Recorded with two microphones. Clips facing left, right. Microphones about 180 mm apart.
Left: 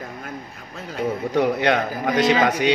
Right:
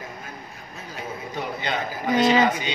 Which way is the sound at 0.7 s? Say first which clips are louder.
Left 10 dB; 70° left (ahead or behind).